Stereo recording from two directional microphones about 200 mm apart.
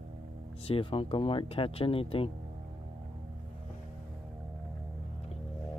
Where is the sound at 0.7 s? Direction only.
25° left (ahead or behind).